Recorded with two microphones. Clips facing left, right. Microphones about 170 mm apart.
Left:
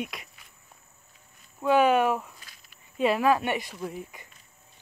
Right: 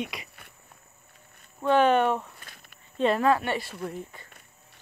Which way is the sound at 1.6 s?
10° left (ahead or behind).